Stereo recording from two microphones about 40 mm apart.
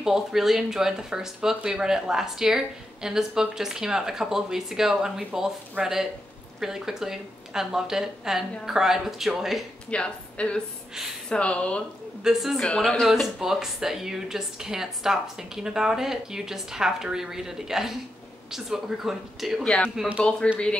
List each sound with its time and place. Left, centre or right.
0.0 s speech: centre
5.8 s speech: right
6.6 s speech: centre
9.8 s a woman's voice: left
13.1 s speech: centre
20.4 s speech: left